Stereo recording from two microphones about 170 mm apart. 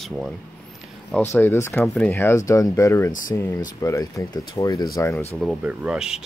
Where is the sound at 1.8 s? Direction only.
5° left (ahead or behind).